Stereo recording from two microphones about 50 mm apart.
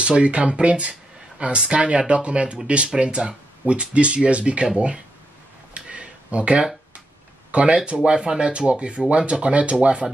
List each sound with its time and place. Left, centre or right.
0.0 s speech: right
5.8 s a sound: right
7.5 s speech: right